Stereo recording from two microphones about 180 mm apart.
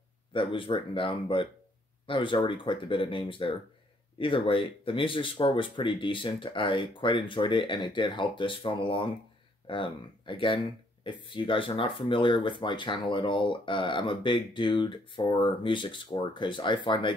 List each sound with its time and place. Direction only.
0.3 s speech: 30° left (ahead or behind)